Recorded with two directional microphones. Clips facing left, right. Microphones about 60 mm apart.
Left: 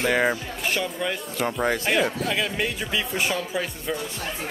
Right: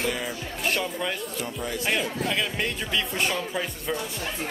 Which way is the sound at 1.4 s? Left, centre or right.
Left.